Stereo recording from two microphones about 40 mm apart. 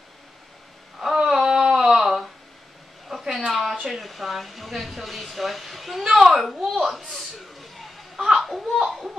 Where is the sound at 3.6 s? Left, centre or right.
Centre.